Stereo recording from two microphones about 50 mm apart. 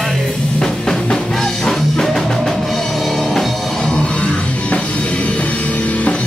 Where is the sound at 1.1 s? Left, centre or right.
Centre.